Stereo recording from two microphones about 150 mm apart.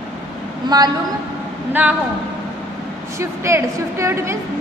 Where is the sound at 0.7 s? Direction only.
30° right (ahead or behind).